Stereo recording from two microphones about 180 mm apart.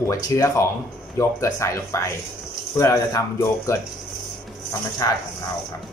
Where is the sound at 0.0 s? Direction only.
15° left (ahead or behind).